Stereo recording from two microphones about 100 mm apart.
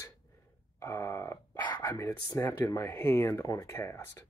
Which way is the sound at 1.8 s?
35° left (ahead or behind).